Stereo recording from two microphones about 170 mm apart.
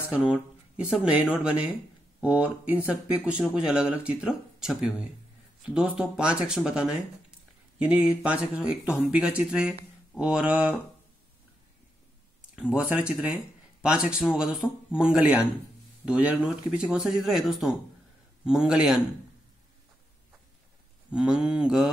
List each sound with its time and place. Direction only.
0.3 s speech: 5° right (ahead or behind)
12.4 s speech: 5° right (ahead or behind)
21.1 s speech: 5° right (ahead or behind)